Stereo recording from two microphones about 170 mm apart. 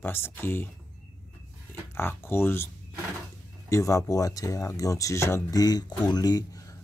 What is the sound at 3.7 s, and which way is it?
Speech, 20° left (ahead or behind).